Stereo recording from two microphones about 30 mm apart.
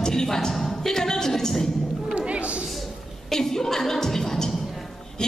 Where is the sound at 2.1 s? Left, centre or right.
Right.